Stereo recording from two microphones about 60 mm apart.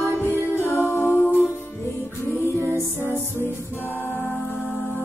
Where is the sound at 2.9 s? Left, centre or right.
Left.